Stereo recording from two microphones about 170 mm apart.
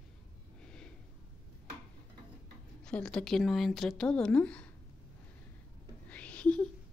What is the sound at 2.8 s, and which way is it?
Speech, 5° left (ahead or behind).